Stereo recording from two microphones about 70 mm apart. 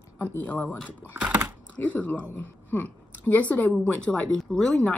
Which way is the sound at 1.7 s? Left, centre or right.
Left.